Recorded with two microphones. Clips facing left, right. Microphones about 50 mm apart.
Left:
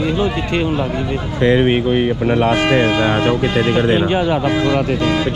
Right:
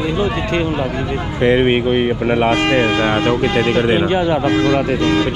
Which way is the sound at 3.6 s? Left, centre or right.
Right.